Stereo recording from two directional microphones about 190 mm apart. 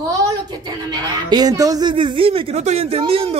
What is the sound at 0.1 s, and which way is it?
Speech, 20° right (ahead or behind).